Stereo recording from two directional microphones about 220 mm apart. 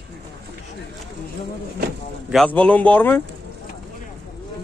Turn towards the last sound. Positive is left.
turn(degrees=10)  # may be behind; listen again after turning